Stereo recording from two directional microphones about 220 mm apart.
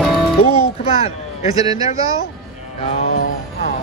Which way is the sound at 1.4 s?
15° right (ahead or behind).